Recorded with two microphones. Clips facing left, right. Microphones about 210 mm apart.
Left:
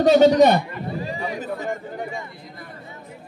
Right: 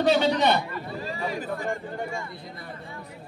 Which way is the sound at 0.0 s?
40° left (ahead or behind).